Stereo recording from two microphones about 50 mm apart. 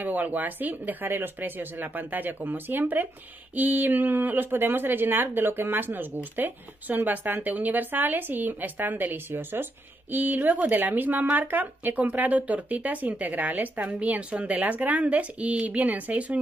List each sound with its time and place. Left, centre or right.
0.0 s speech: right